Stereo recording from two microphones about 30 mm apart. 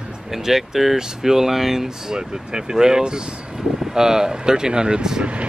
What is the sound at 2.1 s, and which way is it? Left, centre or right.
Speech, right.